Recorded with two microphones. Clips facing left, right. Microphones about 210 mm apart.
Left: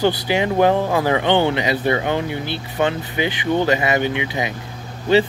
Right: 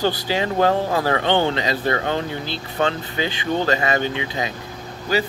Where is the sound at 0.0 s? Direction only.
20° left (ahead or behind).